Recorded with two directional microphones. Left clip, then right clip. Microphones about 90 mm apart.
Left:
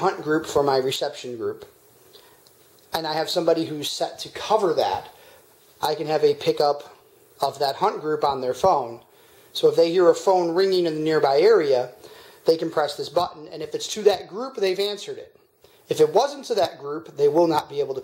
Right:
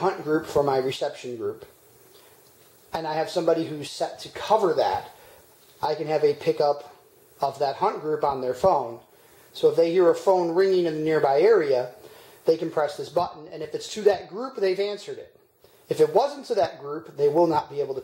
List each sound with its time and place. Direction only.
0.0 s speech: 30° left (ahead or behind)
2.9 s speech: 30° left (ahead or behind)